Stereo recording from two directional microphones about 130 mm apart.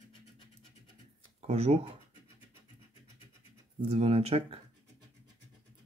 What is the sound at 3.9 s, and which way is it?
Speech, 50° right (ahead or behind).